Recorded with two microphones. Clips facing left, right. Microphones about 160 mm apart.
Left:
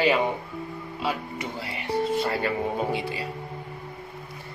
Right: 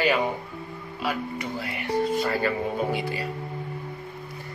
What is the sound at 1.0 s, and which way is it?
Speech, 25° left (ahead or behind).